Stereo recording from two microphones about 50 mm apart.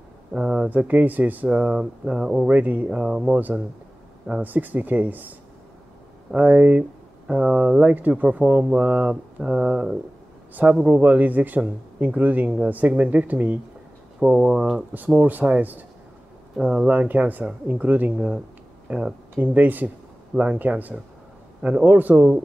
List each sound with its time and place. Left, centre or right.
0.3 s a sound: centre
0.7 s speech: right; by 2.3 s centre
2.4 s speech: right
2.9 s speech: centre
4.4 s speech: right
6.3 s speech: right
10.5 s speech: right
14.2 s speech: centre
15.0 s speech: right
18.1 s speech: centre
19.3 s speech: right